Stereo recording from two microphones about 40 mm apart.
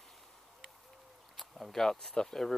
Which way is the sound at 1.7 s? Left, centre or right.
Centre.